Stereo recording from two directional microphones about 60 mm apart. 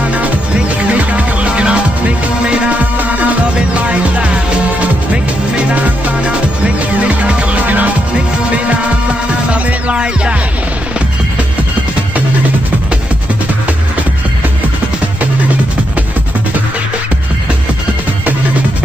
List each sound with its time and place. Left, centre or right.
0.0 s music: right
9.5 s music: right